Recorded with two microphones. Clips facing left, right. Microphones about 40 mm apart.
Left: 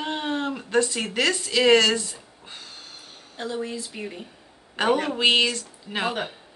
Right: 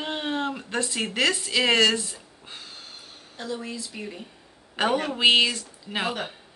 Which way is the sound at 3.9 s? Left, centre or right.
Centre.